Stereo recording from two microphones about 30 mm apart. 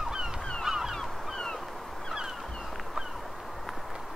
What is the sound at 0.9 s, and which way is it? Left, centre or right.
Honk, centre.